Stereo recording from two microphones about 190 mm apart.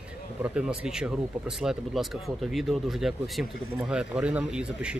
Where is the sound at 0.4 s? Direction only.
5° right (ahead or behind).